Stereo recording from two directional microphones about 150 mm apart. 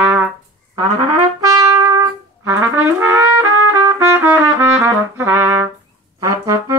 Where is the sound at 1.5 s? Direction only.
25° right (ahead or behind).